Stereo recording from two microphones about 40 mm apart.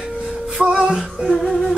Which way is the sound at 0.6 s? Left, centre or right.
Right.